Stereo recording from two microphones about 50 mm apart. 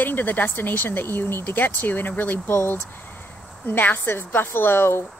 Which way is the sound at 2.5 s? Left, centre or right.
Left.